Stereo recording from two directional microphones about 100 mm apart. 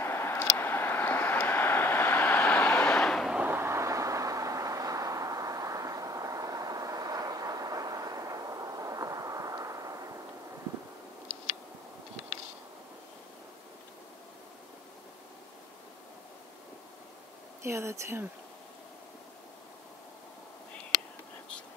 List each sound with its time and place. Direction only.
0.0 s vehicle: 25° left (ahead or behind); by 3.3 s 5° left (ahead or behind)
3.3 s vehicle: 15° right (ahead or behind); by 10.2 s 35° right (ahead or behind)
17.6 s speech: 25° right (ahead or behind)